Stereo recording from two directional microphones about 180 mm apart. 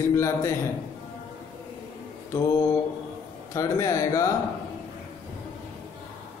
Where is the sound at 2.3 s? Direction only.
15° left (ahead or behind).